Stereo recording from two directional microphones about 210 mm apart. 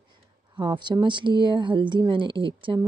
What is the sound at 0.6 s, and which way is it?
Speech, 20° right (ahead or behind).